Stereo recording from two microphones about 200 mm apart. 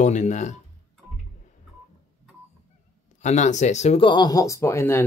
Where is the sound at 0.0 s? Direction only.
35° left (ahead or behind).